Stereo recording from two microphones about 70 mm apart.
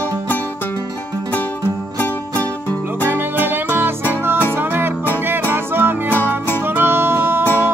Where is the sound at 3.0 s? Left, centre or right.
Right.